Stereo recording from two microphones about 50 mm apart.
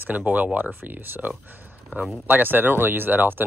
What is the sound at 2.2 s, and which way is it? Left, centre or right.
Speech, right.